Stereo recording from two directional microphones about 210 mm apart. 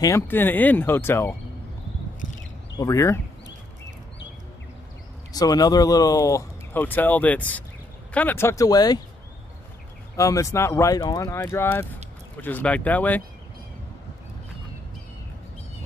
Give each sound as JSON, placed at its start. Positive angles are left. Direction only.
{"t": 0.0, "sound": "speech", "side_deg": 10}
{"t": 2.7, "sound": "speech", "side_deg": 15}
{"t": 5.3, "sound": "speech", "side_deg": 15}
{"t": 10.1, "sound": "speech", "side_deg": 15}